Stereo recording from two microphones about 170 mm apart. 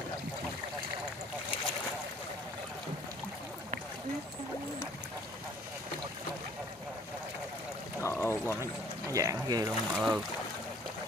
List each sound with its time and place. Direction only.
8.0 s pour: 15° left (ahead or behind)
9.1 s speech: 20° right (ahead or behind)
9.9 s speech: centre (ahead or behind)